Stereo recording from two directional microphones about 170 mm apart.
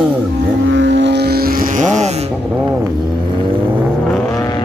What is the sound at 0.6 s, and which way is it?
Vehicle, 90° right.